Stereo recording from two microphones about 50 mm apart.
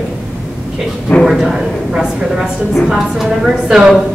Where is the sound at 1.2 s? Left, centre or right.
Centre.